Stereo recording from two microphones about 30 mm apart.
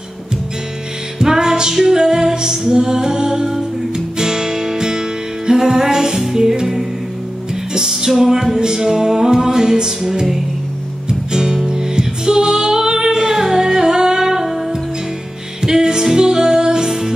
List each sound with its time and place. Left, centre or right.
1.2 s music: centre
7.7 s music: right
8.1 s music: centre
8.5 s music: right
11.3 s music: centre